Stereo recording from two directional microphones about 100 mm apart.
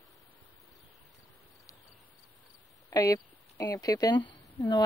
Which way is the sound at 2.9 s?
35° left (ahead or behind).